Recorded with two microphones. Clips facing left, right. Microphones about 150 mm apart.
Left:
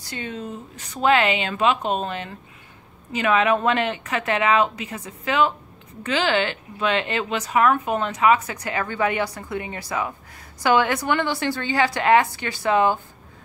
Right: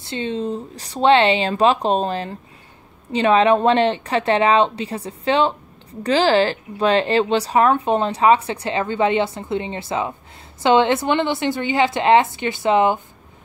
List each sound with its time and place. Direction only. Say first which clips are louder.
0.0 s a woman's voice: right 8 dB; 25° right (ahead or behind)